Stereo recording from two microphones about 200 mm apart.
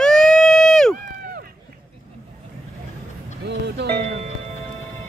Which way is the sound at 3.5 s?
55° right (ahead or behind).